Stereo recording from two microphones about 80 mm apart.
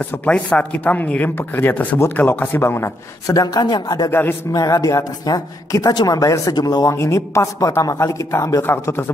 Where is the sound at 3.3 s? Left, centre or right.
Left.